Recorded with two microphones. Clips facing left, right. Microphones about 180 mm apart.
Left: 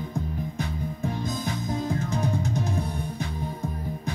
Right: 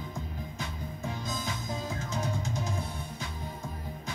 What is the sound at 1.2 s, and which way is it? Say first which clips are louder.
Music: left 6 dB; 60° left (ahead or behind).